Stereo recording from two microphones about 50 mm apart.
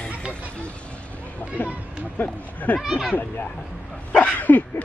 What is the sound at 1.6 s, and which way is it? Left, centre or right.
Speech, left.